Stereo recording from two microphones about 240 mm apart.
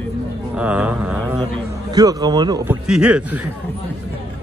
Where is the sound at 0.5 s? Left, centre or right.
Centre.